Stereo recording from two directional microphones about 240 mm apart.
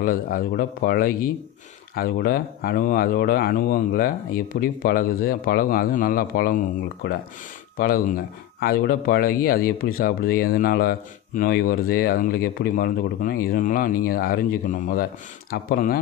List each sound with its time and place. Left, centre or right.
0.0 s speech: left